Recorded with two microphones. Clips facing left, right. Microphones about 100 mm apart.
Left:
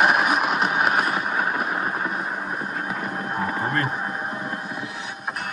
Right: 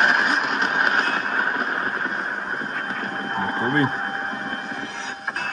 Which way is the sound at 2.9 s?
55° right (ahead or behind).